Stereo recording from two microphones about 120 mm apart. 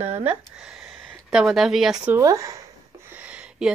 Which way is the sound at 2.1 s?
25° right (ahead or behind).